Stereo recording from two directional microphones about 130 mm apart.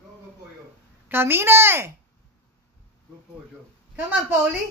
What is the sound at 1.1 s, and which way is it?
Speech, 15° right (ahead or behind).